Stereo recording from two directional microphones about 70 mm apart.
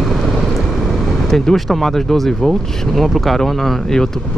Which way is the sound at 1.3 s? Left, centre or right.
Centre.